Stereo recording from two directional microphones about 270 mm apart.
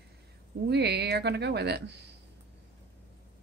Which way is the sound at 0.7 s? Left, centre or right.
Right.